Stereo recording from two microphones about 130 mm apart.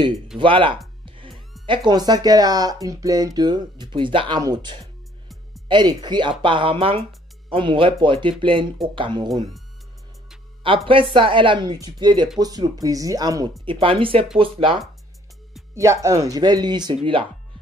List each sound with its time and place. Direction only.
0.4 s speech: 40° right (ahead or behind)
1.0 s music: 40° right (ahead or behind)
1.9 s speech: 30° right (ahead or behind)
10.9 s speech: 45° right (ahead or behind)
13.7 s speech: 40° right (ahead or behind)
15.7 s speech: 20° right (ahead or behind); by 17.3 s 40° right (ahead or behind)